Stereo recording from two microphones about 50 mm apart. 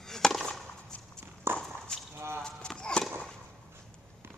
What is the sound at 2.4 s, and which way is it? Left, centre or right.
Clip-clop, centre.